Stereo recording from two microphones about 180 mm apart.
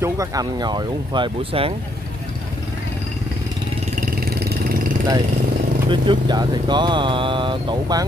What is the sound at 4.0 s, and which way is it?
Vehicle, 55° right (ahead or behind).